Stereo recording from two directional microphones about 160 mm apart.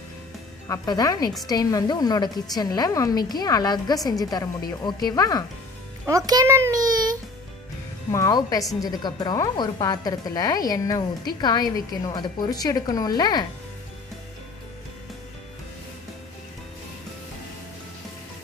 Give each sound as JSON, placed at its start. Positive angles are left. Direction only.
{"t": 0.7, "sound": "speech", "side_deg": 25}
{"t": 6.0, "sound": "a child's voice", "side_deg": -20}
{"t": 8.1, "sound": "speech", "side_deg": 20}